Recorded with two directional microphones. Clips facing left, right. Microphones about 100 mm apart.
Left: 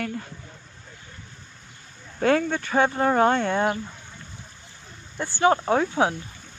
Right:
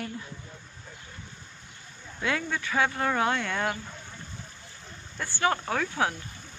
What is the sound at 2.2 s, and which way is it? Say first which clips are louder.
Speech: left 9 dB; 45° left (ahead or behind).